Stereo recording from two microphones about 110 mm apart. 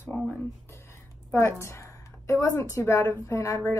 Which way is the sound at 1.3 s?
25° left (ahead or behind).